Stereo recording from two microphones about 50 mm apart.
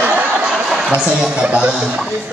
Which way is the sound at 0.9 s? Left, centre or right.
Right.